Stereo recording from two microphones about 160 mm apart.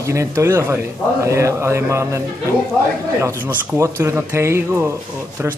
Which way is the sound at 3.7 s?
15° right (ahead or behind).